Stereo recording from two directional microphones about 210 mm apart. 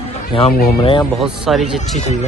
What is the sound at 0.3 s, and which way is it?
Speech, 25° left (ahead or behind).